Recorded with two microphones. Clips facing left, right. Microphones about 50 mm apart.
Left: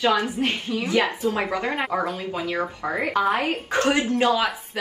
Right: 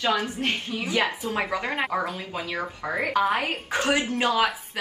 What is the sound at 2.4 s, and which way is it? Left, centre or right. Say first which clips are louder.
Speech: left 4 dB; centre.